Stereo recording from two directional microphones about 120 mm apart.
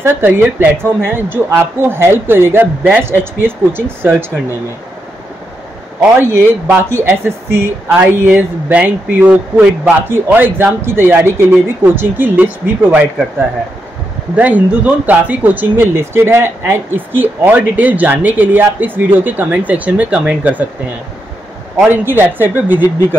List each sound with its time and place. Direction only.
0.0 s a woman's voice: 15° right (ahead or behind)
6.2 s a woman's voice: 20° right (ahead or behind)
14.3 s speech: 10° right (ahead or behind)
21.9 s speech: 15° right (ahead or behind)